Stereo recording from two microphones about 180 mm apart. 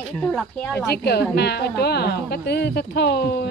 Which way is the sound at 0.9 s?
65° left (ahead or behind).